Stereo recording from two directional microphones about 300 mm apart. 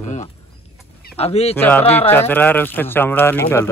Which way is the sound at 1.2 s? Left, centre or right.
Left.